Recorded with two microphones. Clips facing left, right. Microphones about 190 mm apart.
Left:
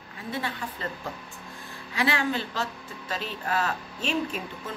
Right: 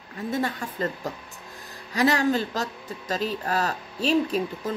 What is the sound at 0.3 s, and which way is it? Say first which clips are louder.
A woman's voice: right 5 dB; 45° right (ahead or behind).